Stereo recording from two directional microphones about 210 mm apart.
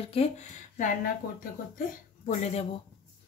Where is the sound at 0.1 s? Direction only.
35° left (ahead or behind).